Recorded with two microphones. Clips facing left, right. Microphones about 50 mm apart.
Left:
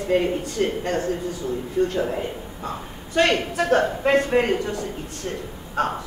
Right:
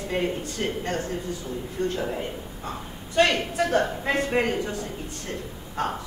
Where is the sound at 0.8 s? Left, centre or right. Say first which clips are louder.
Left 5 dB; left.